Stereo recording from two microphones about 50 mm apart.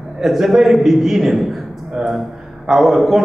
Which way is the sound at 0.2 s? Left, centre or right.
Centre.